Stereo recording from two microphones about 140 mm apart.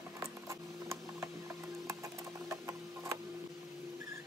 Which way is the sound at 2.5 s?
20° right (ahead or behind).